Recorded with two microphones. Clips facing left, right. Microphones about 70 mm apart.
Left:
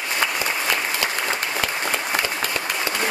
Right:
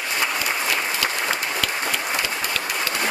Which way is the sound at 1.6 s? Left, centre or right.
Left.